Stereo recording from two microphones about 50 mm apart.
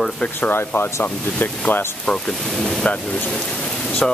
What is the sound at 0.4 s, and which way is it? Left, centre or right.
Speech, left.